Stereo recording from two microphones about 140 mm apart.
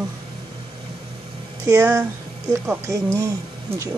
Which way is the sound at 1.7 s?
15° right (ahead or behind).